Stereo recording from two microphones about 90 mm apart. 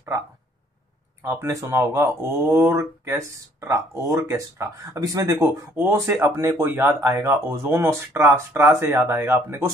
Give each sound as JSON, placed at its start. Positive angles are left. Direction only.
{"t": 1.2, "sound": "speech", "side_deg": -30}
{"t": 5.8, "sound": "speech", "side_deg": -25}